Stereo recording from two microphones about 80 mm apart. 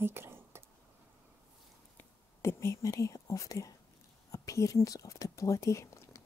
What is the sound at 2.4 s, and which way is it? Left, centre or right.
Speech, left.